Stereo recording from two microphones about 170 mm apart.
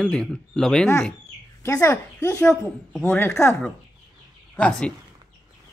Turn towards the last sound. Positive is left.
turn(degrees=5)  # may be behind; listen again after turning